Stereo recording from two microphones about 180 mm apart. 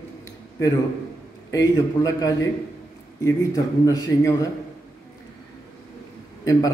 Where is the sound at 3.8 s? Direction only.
20° left (ahead or behind).